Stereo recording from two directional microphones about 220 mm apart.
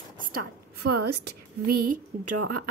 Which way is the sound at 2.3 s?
90° right.